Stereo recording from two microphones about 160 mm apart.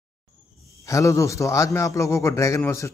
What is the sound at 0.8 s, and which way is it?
A man's voice, 20° left (ahead or behind).